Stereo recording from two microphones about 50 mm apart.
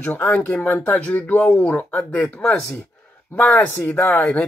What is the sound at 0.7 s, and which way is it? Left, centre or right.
Speech, left.